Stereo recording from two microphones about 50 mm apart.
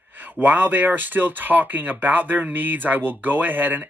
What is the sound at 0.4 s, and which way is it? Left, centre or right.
Speech, right.